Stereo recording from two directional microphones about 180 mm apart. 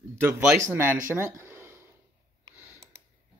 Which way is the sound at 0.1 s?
15° right (ahead or behind).